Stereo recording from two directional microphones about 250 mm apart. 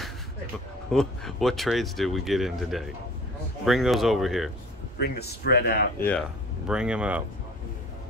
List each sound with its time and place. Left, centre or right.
0.9 s speech: centre
4.9 s speech: left
6.7 s speech: centre